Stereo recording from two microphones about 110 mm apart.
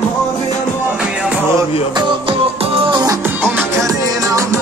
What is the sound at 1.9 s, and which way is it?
Music, 55° right (ahead or behind).